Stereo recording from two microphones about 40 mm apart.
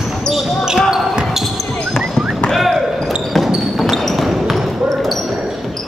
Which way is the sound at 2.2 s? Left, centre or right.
Centre.